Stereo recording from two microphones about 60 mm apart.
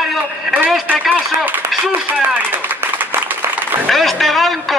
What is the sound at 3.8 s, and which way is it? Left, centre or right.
Speech, centre.